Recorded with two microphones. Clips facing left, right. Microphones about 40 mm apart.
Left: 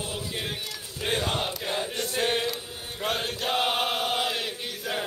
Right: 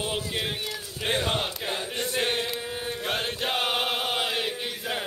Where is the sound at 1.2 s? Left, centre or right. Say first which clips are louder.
Right 1 dB; centre.